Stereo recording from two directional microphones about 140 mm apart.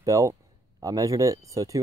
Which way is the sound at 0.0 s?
20° right (ahead or behind).